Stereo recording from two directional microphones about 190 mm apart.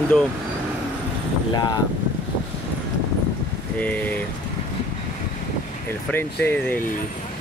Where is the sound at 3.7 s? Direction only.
10° left (ahead or behind).